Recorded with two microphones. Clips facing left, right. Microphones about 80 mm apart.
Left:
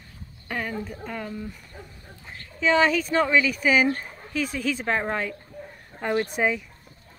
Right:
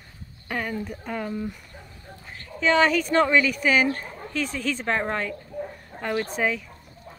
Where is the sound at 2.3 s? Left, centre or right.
Centre.